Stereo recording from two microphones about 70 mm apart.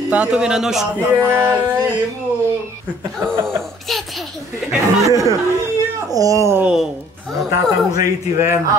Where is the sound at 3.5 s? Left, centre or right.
Centre.